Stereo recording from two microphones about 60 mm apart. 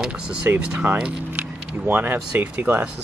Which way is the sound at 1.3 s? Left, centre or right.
Right.